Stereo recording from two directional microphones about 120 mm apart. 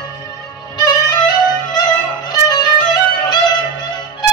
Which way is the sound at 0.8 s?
35° left (ahead or behind).